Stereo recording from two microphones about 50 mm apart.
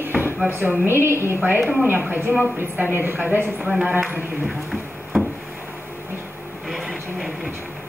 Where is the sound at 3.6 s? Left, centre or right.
Centre.